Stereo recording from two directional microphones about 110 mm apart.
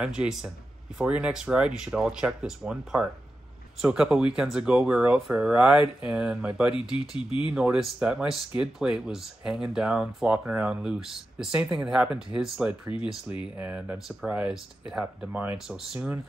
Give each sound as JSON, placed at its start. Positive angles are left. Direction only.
{"t": 0.0, "sound": "speech", "side_deg": -5}
{"t": 7.2, "sound": "speech", "side_deg": 50}
{"t": 7.5, "sound": "speech", "side_deg": -5}